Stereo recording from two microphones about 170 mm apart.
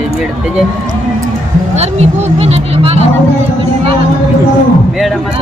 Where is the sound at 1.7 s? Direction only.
35° right (ahead or behind).